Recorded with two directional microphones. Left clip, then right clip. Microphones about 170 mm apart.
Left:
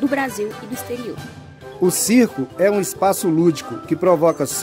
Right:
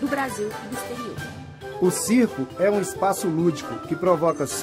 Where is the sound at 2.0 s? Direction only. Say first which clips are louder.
Left 5 dB; 55° left (ahead or behind).